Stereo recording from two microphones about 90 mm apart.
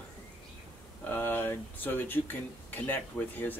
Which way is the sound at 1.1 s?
25° left (ahead or behind).